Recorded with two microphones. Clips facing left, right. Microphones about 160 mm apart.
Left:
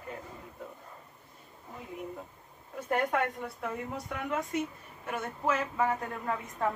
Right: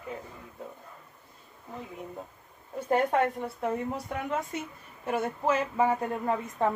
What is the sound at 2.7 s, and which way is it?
A woman's voice, 30° right (ahead or behind).